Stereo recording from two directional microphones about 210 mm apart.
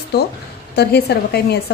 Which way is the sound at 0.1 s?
50° left (ahead or behind).